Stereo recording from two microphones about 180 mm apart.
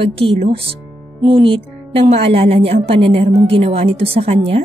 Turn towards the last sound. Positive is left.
turn(degrees=-35)  # may be behind; listen again after turning